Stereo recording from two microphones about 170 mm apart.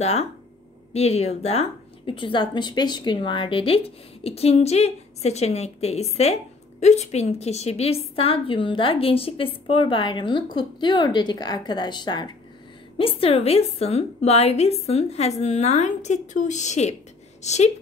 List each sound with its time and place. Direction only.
0.0 s a woman's voice: 40° left (ahead or behind)